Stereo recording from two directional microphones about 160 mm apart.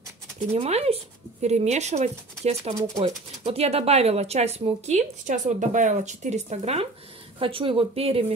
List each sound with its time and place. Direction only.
0.6 s speech: 40° right (ahead or behind)